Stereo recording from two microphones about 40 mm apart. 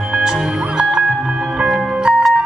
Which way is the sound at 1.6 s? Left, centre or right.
Centre.